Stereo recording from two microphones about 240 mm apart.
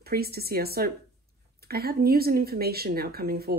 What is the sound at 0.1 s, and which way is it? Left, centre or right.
Speech, right.